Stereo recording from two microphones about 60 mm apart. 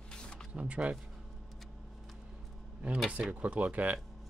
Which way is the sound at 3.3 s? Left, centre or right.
Right.